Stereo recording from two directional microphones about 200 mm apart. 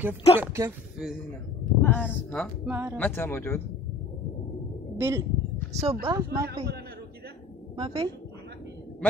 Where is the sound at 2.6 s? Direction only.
10° right (ahead or behind).